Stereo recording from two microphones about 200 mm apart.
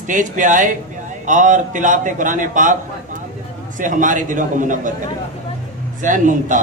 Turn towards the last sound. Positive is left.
turn(degrees=-40)  # may be behind; listen again after turning